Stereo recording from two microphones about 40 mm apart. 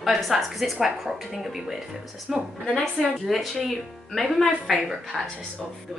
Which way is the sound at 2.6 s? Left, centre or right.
Centre.